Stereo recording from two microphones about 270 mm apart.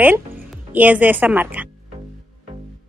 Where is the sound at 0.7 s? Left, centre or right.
Centre.